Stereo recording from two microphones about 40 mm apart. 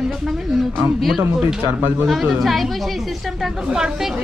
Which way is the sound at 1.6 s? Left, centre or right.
Right.